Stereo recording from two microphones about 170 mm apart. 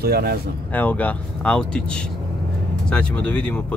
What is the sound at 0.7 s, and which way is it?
Speech, 10° left (ahead or behind).